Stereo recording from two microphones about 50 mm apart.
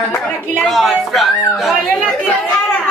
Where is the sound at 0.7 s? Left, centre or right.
Centre.